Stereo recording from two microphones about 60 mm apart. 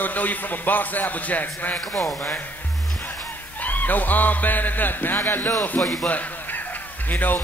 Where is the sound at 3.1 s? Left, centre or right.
Left.